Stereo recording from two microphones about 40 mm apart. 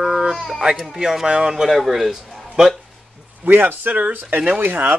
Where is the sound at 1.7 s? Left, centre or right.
Centre.